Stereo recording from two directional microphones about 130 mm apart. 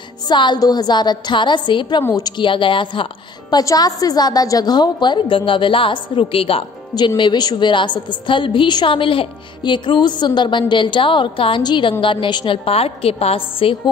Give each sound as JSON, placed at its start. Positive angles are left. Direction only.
{"t": 0.3, "sound": "a woman's voice", "side_deg": 35}
{"t": 7.2, "sound": "a woman's voice", "side_deg": 35}